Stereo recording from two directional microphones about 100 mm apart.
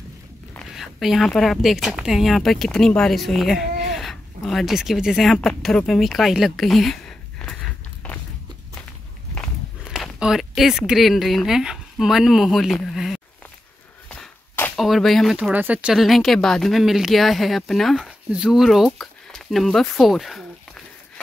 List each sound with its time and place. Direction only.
0.7 s speech: centre (ahead or behind)
8.0 s walk: 10° left (ahead or behind)
10.1 s a sound: 5° right (ahead or behind)
10.9 s speech: centre (ahead or behind)
14.8 s speech: centre (ahead or behind)
15.3 s speech: 15° right (ahead or behind)
16.0 s speech: centre (ahead or behind)